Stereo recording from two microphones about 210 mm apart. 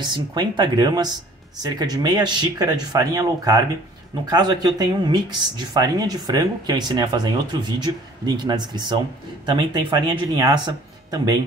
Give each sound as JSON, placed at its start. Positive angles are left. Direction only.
{"t": 0.0, "sound": "speech", "side_deg": -20}